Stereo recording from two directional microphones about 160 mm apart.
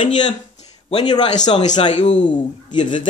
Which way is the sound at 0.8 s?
40° left (ahead or behind).